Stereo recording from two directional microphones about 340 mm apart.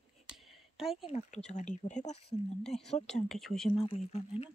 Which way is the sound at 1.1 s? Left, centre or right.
Centre.